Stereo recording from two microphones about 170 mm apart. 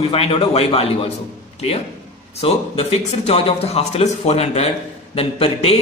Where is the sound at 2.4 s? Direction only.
35° left (ahead or behind).